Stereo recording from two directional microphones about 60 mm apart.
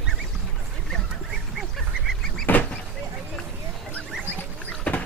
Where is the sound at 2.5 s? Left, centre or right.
Left.